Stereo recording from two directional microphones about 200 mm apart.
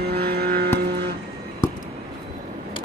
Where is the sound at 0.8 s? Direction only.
55° right (ahead or behind).